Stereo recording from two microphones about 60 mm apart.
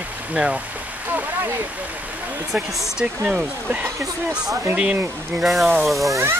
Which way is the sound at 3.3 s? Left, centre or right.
Right.